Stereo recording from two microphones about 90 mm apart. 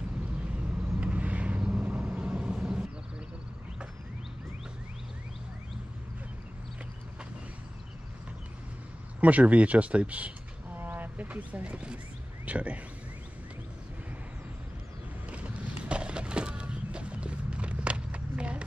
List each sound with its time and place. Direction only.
0.5 s vehicle: 15° right (ahead or behind)
9.2 s speech: 15° right (ahead or behind)
15.2 s a sound: 15° right (ahead or behind)